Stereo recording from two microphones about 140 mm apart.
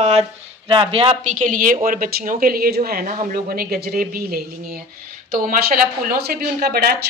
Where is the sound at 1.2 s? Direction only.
70° right (ahead or behind).